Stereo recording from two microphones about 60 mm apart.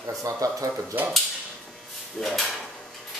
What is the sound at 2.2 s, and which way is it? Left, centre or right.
Speech, centre.